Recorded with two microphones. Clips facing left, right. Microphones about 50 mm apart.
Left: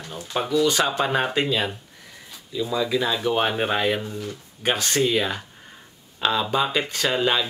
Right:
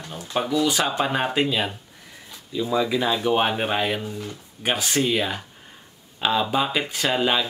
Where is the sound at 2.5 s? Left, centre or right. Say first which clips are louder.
Right 1 dB; centre.